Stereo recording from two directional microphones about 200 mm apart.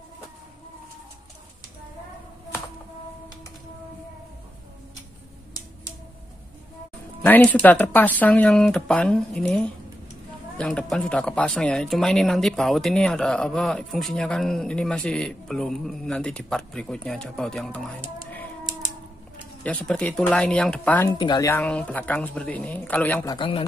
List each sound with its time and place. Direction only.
7.2 s speech: 10° left (ahead or behind)
19.6 s speech: 5° left (ahead or behind)
21.1 s speech: 20° left (ahead or behind)
21.5 s speech: 10° left (ahead or behind)
23.3 s speech: 25° left (ahead or behind)